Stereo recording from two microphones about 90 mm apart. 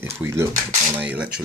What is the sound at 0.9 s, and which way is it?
Speech, 20° right (ahead or behind).